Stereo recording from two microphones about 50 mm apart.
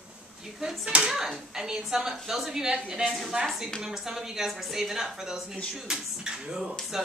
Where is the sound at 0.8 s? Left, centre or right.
Right.